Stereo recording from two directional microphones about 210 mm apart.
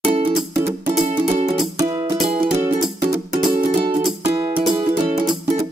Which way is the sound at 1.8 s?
15° right (ahead or behind).